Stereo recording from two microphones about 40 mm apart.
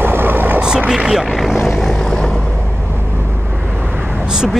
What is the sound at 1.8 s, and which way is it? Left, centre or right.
Vehicle, centre.